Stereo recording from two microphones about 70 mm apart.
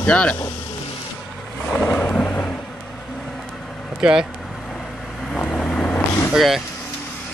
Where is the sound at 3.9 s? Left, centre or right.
Centre.